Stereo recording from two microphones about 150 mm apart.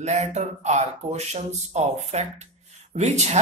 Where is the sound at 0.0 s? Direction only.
50° right (ahead or behind).